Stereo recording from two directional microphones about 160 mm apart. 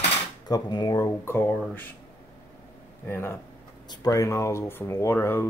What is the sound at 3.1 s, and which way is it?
Speech, 15° left (ahead or behind).